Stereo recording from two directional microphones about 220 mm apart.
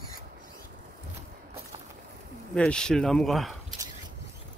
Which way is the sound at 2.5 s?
5° left (ahead or behind).